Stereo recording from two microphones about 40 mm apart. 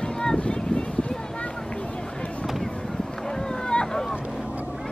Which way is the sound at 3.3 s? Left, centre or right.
Centre.